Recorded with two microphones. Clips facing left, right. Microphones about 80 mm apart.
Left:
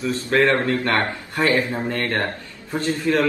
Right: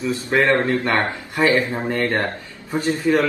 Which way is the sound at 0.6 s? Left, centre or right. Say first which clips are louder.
Right 2 dB; right.